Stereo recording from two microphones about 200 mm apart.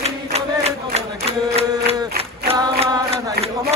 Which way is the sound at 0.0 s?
30° right (ahead or behind).